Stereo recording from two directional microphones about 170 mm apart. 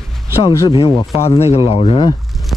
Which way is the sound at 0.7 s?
30° left (ahead or behind).